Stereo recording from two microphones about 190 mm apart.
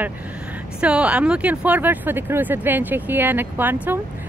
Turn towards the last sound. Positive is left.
turn(degrees=-10)  # may be behind; listen again after turning